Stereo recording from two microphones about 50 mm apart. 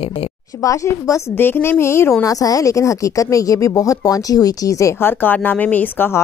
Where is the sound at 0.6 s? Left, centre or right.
Left.